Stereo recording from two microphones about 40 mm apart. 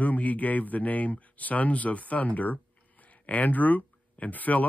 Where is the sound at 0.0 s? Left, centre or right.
Left.